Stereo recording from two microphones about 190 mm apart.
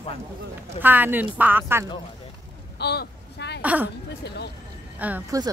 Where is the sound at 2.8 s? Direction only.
60° left (ahead or behind).